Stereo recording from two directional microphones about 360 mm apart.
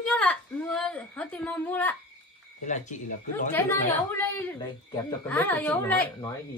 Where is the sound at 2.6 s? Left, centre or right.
Centre.